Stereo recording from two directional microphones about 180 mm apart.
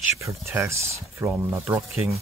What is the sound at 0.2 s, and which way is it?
Speech, 15° right (ahead or behind).